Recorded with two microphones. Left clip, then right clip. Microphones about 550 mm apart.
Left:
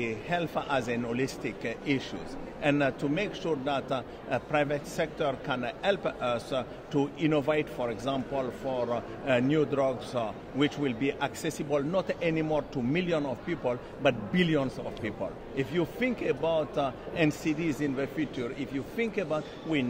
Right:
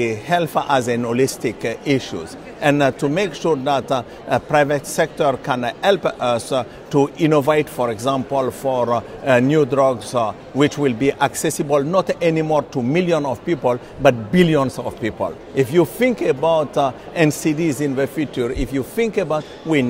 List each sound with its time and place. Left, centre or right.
0.0 s a man's voice: right